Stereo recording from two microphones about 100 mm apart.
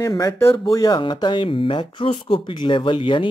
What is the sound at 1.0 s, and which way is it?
Speech, 50° left (ahead or behind).